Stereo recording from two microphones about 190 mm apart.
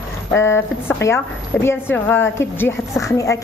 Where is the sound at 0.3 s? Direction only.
15° left (ahead or behind).